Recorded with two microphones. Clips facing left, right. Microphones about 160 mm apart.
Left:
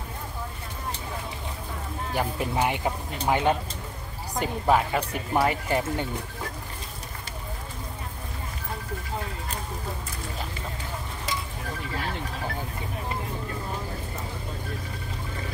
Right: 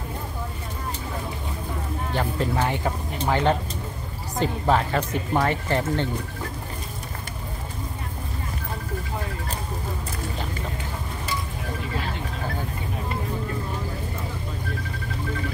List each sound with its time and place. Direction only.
2.1 s speech: 15° left (ahead or behind)